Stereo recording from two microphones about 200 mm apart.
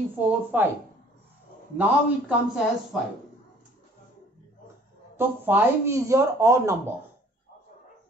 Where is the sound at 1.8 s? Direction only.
5° right (ahead or behind).